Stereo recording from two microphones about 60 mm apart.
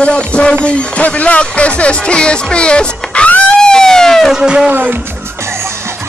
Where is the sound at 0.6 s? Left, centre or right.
Centre.